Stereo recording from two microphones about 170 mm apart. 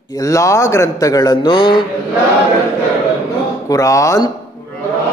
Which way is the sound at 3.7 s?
20° left (ahead or behind).